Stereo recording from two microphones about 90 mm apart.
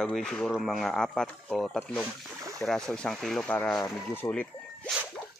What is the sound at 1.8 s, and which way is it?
Speech, 15° left (ahead or behind).